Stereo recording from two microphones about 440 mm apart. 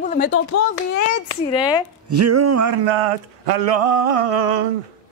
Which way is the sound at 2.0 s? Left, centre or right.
Right.